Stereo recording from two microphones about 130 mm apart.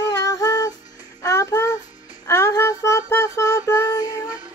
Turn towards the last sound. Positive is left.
turn(degrees=25)  # may be behind; listen again after turning